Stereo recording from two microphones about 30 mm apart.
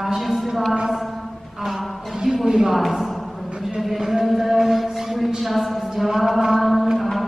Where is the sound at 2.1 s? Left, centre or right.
Centre.